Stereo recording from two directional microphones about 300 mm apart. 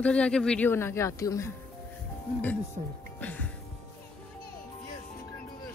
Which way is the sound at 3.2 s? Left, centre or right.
Centre.